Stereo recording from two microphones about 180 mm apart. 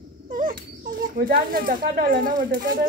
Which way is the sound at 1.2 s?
50° right (ahead or behind).